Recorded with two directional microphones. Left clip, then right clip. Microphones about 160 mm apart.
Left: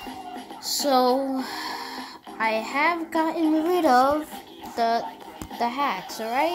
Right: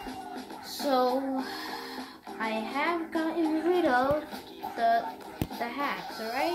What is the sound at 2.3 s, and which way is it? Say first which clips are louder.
A child's voice: left 7 dB; 80° left.